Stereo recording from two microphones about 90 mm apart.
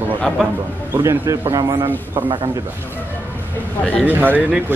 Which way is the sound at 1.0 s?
35° right (ahead or behind).